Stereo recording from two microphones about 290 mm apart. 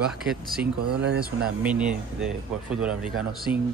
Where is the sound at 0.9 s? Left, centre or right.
Right.